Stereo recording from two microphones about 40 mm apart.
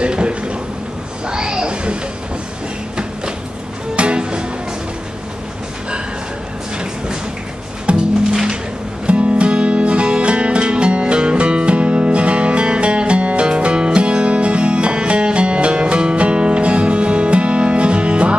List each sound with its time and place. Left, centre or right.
0.0 s a sound: right
3.9 s music: right
7.9 s music: centre
9.0 s music: right